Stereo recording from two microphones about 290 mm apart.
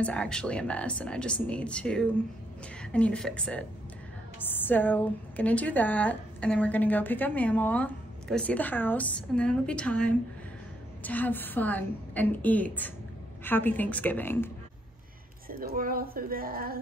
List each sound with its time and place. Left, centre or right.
0.0 s a woman's voice: centre
15.4 s speech: right